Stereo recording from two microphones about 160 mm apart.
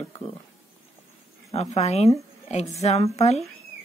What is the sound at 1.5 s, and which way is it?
A woman's voice, 45° left (ahead or behind).